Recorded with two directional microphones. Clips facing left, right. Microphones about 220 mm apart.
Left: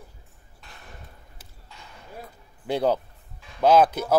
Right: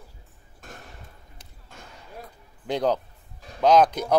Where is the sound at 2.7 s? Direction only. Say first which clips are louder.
Left 1 dB; 10° left (ahead or behind).